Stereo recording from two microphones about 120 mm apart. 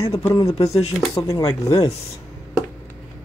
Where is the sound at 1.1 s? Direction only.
30° left (ahead or behind).